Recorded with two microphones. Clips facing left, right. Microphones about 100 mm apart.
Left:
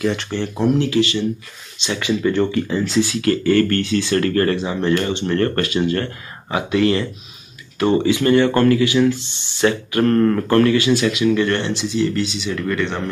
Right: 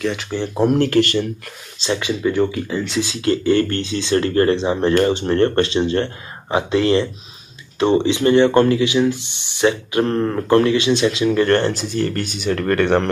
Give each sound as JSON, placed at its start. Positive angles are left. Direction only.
{"t": 0.0, "sound": "speech", "side_deg": 0}
{"t": 0.7, "sound": "speech", "side_deg": -50}
{"t": 2.0, "sound": "speech", "side_deg": -15}
{"t": 3.0, "sound": "speech", "side_deg": -20}
{"t": 11.2, "sound": "speech", "side_deg": -45}